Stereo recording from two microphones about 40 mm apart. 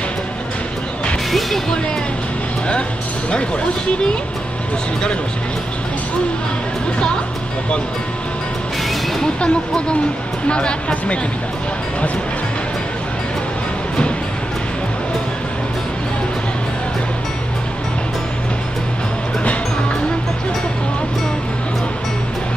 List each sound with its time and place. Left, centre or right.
9.4 s speech: left